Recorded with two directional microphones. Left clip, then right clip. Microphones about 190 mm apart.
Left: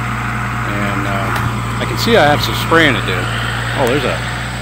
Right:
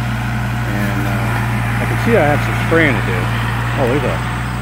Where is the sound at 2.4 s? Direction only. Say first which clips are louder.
Left 2 dB; 45° right (ahead or behind).